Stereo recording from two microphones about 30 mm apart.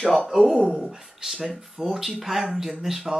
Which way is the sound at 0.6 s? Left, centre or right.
Right.